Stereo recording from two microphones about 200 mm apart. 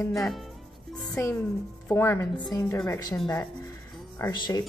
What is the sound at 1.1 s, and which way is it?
Speech, 15° left (ahead or behind).